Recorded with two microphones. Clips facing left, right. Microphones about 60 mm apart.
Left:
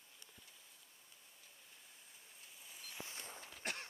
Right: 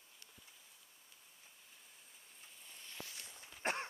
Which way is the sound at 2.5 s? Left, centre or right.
Centre.